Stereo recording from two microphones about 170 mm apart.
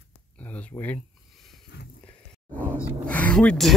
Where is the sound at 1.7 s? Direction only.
70° left (ahead or behind).